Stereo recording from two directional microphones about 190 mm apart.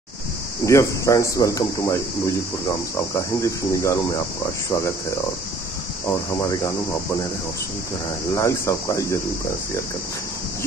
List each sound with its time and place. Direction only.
0.7 s speech: 15° left (ahead or behind)
3.2 s speech: 15° left (ahead or behind)
6.4 s speech: 15° left (ahead or behind)
8.4 s speech: 15° left (ahead or behind)